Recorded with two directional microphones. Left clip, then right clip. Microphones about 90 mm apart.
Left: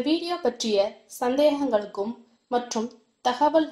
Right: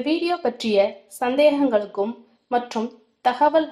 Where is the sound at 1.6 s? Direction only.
40° right (ahead or behind).